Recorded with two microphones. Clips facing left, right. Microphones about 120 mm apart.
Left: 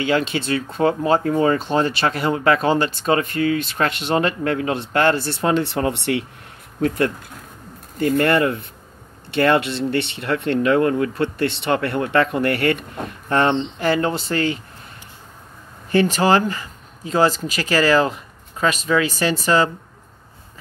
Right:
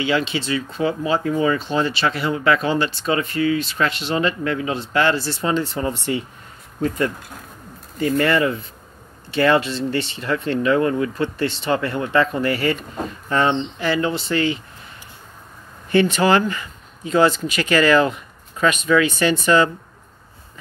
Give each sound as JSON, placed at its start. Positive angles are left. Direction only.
{"t": 0.0, "sound": "speech", "side_deg": 50}
{"t": 8.0, "sound": "speech", "side_deg": 55}
{"t": 15.9, "sound": "speech", "side_deg": 40}